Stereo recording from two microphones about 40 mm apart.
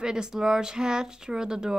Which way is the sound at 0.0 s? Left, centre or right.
Centre.